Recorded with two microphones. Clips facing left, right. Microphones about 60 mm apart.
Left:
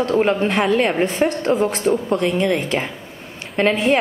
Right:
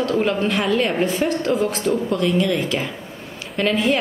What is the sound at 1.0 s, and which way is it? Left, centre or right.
Speech, left.